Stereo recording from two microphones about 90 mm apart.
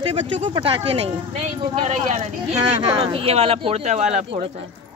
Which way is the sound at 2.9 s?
90° right.